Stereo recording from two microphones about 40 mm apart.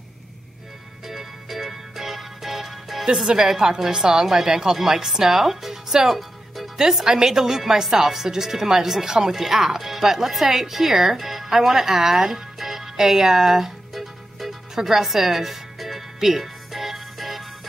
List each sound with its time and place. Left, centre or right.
1.0 s music: centre
3.3 s speech: centre
6.1 s music: centre
6.8 s speech: centre
14.8 s music: centre